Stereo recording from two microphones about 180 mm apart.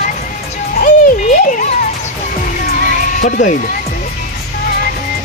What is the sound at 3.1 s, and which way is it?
Speech, 45° left (ahead or behind).